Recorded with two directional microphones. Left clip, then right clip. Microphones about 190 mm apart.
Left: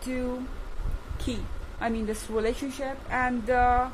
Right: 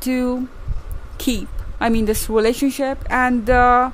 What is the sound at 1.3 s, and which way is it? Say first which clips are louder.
A woman's voice: right 12 dB; 60° right (ahead or behind).